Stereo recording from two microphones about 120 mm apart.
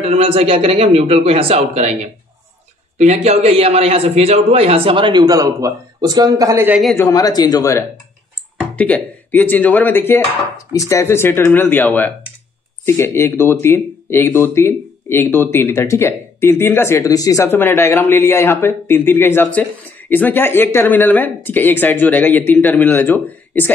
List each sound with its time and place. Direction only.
0.0 s a man's voice: 55° right (ahead or behind)
3.0 s speech: 65° right (ahead or behind); by 6.6 s 30° right (ahead or behind)
7.0 s speech: 30° left (ahead or behind)
8.7 s speech: 10° left (ahead or behind)